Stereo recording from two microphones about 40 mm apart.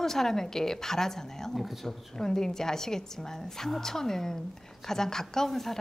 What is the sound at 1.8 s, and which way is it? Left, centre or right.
Speech, centre.